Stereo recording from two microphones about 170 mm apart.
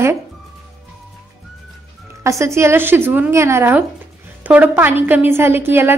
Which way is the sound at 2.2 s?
15° right (ahead or behind).